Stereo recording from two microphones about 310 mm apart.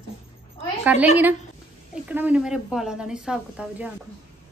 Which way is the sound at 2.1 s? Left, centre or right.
Centre.